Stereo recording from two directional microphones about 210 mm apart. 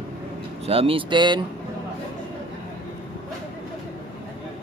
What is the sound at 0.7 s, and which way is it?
Speech, 25° right (ahead or behind).